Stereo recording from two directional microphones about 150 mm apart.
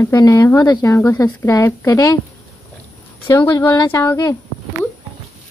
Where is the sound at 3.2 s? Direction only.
20° left (ahead or behind).